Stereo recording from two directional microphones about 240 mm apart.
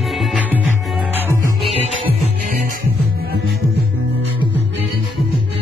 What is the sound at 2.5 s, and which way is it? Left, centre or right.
Music, right.